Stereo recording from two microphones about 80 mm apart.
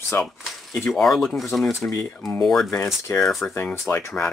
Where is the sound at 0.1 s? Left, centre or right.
Left.